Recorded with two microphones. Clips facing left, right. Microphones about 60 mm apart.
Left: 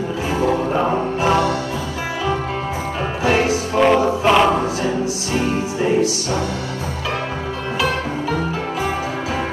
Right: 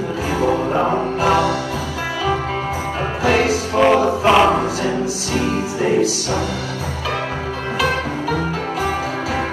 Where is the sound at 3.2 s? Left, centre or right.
Right.